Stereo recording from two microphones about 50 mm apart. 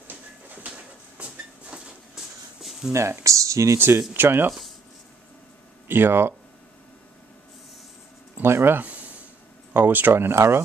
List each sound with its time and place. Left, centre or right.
0.7 s a sound: right
2.9 s speech: right
4.1 s speech: right
4.5 s a sound: centre
5.9 s speech: right
8.4 s speech: right
8.7 s a sound: right
9.8 s speech: right
10.3 s speech: right